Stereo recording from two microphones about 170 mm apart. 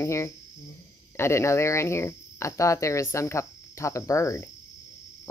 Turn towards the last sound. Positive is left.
turn(degrees=15)  # may be behind; listen again after turning